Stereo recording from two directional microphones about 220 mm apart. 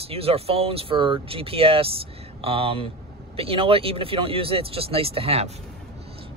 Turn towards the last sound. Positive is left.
turn(degrees=-25)  # may be behind; listen again after turning